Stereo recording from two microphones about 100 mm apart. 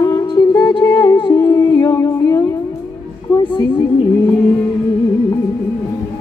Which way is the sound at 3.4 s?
55° left (ahead or behind).